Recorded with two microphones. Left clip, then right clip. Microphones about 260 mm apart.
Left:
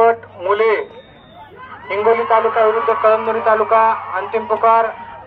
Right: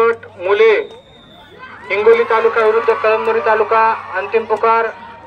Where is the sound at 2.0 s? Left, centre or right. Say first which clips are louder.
Right 2 dB; centre.